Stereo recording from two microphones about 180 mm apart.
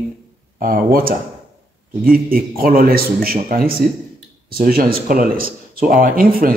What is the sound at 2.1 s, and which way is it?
Speech, 55° right (ahead or behind).